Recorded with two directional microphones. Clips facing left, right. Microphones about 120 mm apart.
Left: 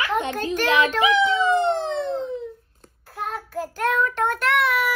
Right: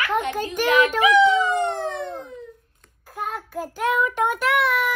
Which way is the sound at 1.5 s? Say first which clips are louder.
Left 3 dB; 20° left (ahead or behind).